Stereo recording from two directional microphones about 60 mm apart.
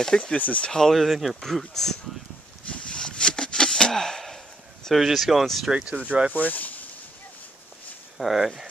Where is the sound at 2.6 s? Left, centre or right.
Centre.